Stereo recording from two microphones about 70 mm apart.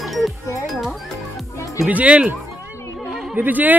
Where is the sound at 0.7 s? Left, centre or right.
Centre.